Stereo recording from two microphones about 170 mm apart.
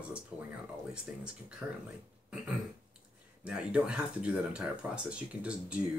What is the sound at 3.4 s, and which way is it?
Speech, 5° right (ahead or behind).